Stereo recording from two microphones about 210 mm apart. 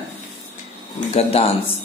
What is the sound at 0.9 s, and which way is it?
Speech, 30° left (ahead or behind).